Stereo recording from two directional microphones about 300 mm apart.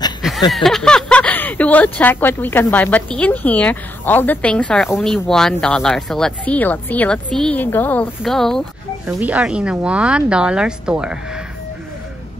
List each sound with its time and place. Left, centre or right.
0.5 s speech: centre